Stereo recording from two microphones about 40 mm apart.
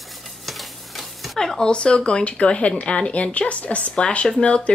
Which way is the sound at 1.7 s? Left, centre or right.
Left.